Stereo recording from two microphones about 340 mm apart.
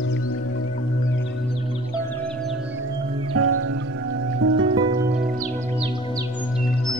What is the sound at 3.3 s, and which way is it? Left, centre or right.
Music, right.